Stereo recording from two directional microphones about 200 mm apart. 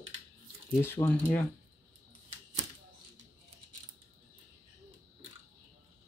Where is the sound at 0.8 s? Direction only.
10° left (ahead or behind).